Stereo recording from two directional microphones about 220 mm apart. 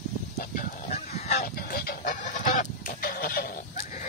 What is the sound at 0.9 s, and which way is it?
Goose, 30° left (ahead or behind).